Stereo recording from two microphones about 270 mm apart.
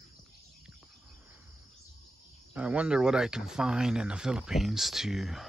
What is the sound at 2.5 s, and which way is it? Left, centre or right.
Speech, centre.